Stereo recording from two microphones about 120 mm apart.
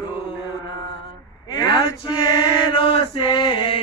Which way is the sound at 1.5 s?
35° left (ahead or behind).